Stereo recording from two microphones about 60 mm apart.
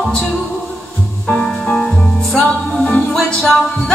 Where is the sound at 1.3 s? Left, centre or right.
Centre.